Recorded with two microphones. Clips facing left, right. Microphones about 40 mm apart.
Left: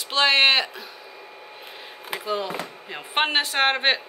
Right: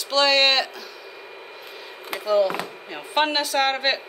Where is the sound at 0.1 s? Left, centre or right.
Left.